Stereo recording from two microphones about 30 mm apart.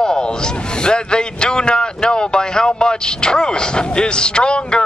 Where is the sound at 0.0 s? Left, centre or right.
Left.